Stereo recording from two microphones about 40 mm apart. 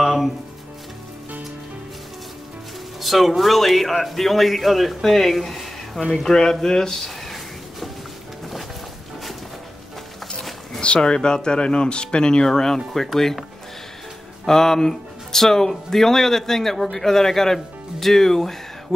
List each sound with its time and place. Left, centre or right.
0.0 s music: centre
3.0 s speech: centre
6.2 s a sound: centre
10.8 s speech: left; by 13.4 s centre
14.4 s speech: centre